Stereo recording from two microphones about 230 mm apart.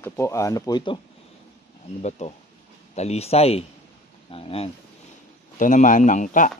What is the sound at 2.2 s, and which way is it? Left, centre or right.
Speech, left.